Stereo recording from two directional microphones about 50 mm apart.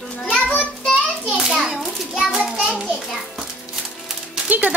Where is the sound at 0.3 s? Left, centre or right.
Left.